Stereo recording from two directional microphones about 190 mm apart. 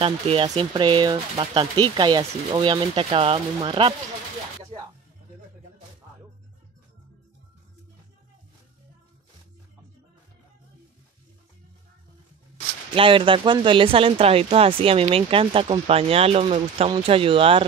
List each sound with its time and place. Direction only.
0.0 s speech: 30° right (ahead or behind)
12.9 s speech: 25° right (ahead or behind)